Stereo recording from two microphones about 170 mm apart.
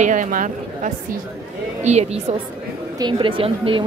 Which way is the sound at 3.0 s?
30° right (ahead or behind).